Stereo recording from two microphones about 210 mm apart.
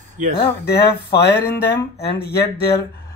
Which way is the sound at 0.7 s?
50° left (ahead or behind).